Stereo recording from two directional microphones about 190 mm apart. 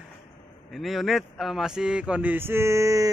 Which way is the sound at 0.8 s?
Centre (ahead or behind).